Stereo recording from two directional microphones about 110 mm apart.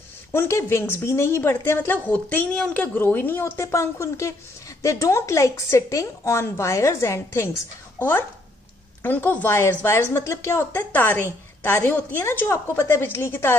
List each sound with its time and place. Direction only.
0.3 s a woman's voice: 25° left (ahead or behind)
9.0 s a woman's voice: 15° left (ahead or behind)